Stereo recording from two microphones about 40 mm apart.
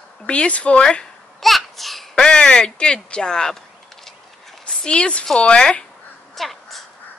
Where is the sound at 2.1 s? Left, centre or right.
Left.